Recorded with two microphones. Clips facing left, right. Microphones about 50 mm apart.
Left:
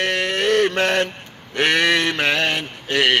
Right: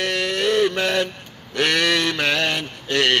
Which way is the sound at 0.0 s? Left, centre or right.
Left.